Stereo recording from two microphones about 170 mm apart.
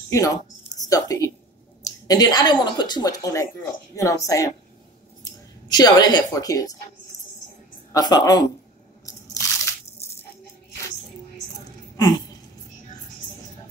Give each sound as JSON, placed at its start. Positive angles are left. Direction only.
{"t": 0.1, "sound": "a woman's voice", "side_deg": 20}
{"t": 7.9, "sound": "speech", "side_deg": 25}
{"t": 9.0, "sound": "crushing", "side_deg": 20}